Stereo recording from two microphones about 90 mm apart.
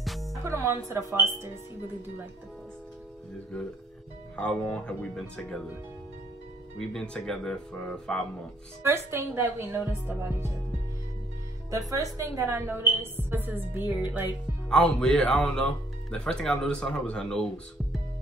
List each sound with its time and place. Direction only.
0.0 s music: centre (ahead or behind)
0.5 s music: 35° right (ahead or behind)
0.8 s speech: 35° right (ahead or behind)
4.4 s speech: 15° left (ahead or behind)
6.8 s speech: 5° left (ahead or behind)
8.8 s a woman's voice: 30° right (ahead or behind)
11.9 s a woman's voice: 40° right (ahead or behind); by 13.9 s 20° right (ahead or behind)
14.7 s speech: 10° left (ahead or behind)